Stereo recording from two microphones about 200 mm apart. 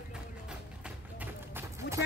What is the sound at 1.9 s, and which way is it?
Music, 60° left (ahead or behind).